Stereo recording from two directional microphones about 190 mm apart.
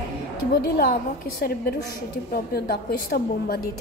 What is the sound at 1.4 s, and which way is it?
A woman's voice, 55° left (ahead or behind).